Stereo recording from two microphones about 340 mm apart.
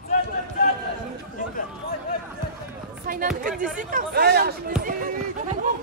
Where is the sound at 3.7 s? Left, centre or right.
Right.